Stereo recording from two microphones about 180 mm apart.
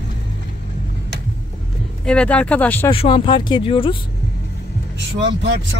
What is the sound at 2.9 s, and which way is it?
Speech, 30° left (ahead or behind).